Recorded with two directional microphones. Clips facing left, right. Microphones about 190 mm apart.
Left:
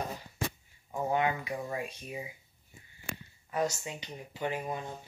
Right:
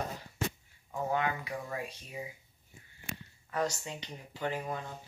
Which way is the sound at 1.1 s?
20° left (ahead or behind).